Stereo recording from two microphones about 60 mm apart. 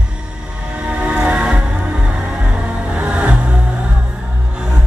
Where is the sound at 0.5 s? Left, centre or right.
Centre.